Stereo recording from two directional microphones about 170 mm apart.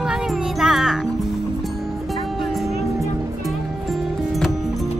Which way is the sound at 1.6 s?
Centre (ahead or behind).